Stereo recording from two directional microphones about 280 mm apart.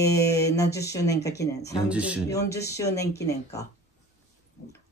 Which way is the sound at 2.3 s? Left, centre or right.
Centre.